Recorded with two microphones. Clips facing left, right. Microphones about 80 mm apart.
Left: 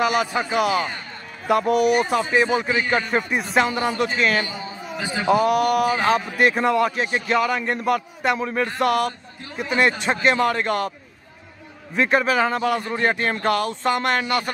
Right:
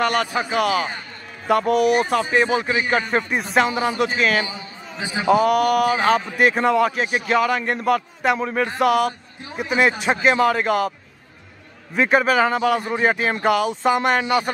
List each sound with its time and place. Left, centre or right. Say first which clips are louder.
0.0 s a man's voice: even; centre
4.9 s a man's voice: right 1 dB; centre
5.3 s a man's voice: right 2 dB; centre
11.9 s a man's voice: right 2 dB; centre